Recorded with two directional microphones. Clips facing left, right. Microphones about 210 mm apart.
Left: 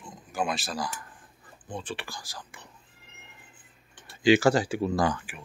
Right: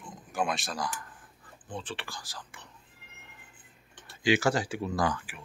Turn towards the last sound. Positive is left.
turn(degrees=20)  # may be behind; listen again after turning